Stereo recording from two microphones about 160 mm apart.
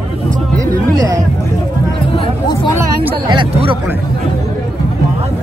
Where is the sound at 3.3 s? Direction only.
35° right (ahead or behind).